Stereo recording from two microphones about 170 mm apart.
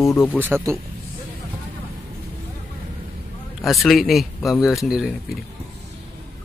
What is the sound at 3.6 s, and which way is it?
Mantra, centre (ahead or behind).